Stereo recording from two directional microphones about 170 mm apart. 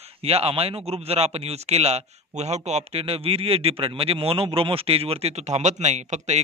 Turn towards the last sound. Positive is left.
turn(degrees=-40)  # may be behind; listen again after turning